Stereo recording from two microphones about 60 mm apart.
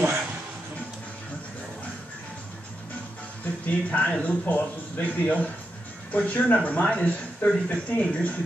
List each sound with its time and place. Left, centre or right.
3.6 s speech: centre